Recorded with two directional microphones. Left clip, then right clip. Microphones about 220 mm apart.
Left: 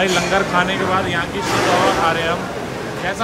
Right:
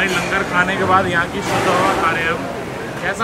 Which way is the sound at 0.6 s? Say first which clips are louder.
Right 2 dB; centre (ahead or behind).